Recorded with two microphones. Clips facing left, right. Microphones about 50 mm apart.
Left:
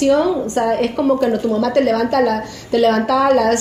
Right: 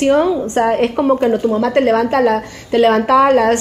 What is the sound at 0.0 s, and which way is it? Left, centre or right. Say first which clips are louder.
A woman's voice: right 1 dB; right.